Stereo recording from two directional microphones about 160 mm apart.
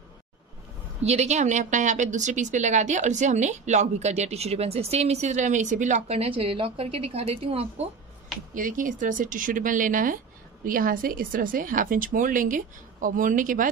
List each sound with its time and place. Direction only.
1.0 s speech: 45° right (ahead or behind)
8.5 s speech: 55° right (ahead or behind)